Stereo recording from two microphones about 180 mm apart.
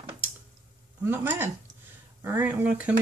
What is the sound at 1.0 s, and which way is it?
Speech, 10° right (ahead or behind).